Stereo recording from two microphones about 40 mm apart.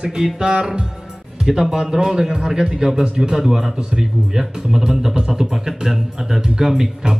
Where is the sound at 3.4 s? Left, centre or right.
Centre.